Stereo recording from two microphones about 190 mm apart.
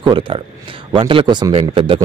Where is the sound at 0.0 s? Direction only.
25° right (ahead or behind).